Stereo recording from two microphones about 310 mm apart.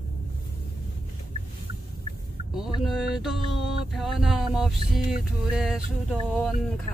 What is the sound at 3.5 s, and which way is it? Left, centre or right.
Music, centre.